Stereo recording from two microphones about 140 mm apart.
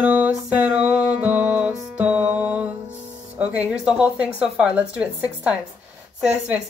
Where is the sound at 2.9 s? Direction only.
55° right (ahead or behind).